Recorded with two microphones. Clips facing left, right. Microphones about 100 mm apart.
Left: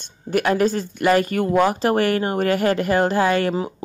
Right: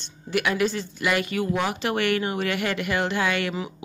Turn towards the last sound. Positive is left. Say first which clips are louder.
# left 6 dB
turn(degrees=40)  # may be behind; listen again after turning